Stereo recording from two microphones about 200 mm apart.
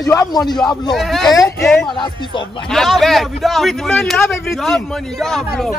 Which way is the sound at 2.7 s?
Centre (ahead or behind).